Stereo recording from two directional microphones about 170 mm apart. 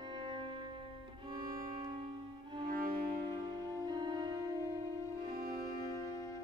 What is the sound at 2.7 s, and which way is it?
Cello, 60° right (ahead or behind).